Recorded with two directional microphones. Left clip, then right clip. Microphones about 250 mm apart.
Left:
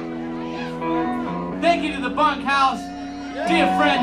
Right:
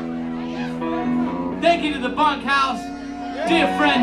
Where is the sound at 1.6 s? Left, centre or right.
Left.